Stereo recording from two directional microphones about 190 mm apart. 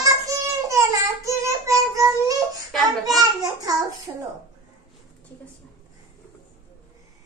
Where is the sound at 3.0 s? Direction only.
20° right (ahead or behind).